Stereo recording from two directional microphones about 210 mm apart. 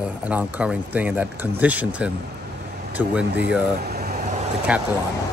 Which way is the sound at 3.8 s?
50° right (ahead or behind).